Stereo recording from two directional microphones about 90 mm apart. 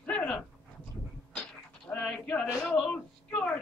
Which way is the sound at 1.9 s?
10° left (ahead or behind).